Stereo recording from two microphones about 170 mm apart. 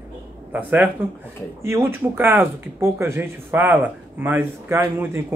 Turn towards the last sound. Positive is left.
turn(degrees=-15)  # may be behind; listen again after turning